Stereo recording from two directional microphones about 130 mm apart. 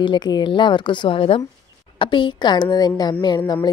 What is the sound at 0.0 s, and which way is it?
A woman's voice, 35° left (ahead or behind).